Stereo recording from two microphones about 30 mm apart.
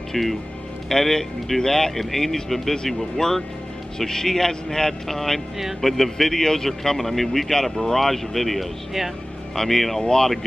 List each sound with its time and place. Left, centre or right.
0.1 s a man's voice: centre
7.0 s a man's voice: centre
9.9 s speech: centre